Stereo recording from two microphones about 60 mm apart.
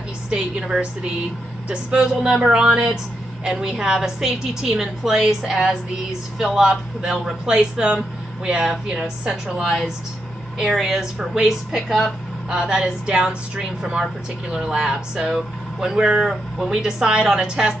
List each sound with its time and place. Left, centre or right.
0.3 s speech: centre
2.2 s speech: centre